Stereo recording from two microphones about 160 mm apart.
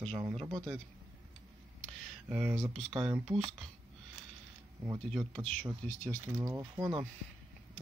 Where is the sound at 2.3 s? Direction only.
10° right (ahead or behind).